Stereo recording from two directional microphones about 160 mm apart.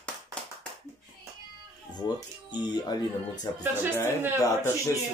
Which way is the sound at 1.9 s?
25° left (ahead or behind).